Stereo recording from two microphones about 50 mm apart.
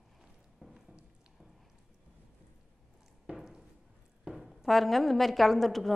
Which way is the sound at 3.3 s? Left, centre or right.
Centre.